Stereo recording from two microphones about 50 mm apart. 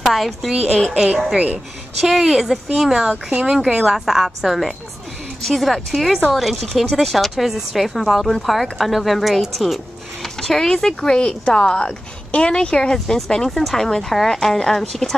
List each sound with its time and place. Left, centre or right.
0.0 s a woman's voice: centre
1.1 s speech: right
2.0 s speech: centre